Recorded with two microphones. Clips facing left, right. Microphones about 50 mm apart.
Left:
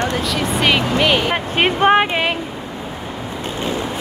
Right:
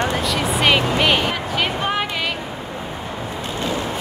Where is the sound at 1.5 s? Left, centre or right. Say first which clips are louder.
Left 10 dB; left.